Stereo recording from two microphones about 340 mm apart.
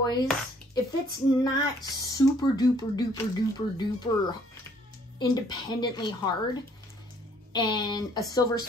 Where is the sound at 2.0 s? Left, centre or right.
Centre.